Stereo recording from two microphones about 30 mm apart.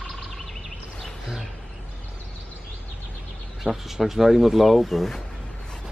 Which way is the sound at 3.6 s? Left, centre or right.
Centre.